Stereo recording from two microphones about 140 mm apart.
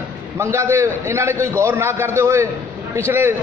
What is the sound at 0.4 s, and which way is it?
A man's voice, 20° right (ahead or behind).